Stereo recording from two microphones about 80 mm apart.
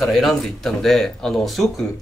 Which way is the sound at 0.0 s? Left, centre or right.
Centre.